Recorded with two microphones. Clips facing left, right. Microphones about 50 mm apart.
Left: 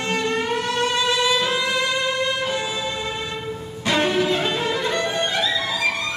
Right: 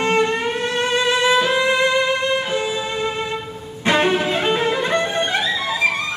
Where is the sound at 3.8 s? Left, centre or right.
Right.